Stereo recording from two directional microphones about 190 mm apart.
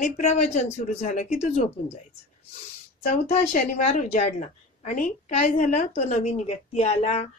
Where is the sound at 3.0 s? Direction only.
35° left (ahead or behind).